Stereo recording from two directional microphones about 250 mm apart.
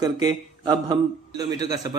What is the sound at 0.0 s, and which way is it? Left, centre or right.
A man's voice, centre.